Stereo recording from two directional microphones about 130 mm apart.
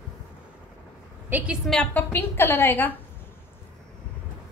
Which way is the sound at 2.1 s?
15° left (ahead or behind).